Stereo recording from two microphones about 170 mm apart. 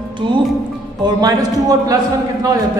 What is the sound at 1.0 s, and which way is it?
Speech, 20° right (ahead or behind).